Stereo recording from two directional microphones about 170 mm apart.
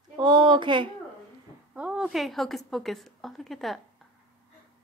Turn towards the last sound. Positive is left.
turn(degrees=0)  # may be behind; listen again after turning